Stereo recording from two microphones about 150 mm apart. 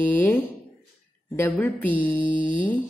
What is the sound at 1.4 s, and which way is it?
Speech, 10° left (ahead or behind).